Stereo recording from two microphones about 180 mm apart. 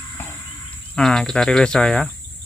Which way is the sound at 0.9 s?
Centre (ahead or behind).